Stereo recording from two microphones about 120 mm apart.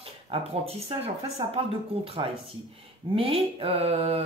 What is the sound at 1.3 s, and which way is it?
Speech, 55° right (ahead or behind).